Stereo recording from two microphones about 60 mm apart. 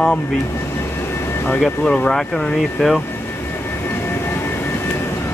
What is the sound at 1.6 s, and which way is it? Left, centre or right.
Speech, centre.